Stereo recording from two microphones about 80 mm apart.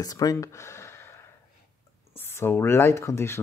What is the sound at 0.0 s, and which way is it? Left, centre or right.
Speech, left.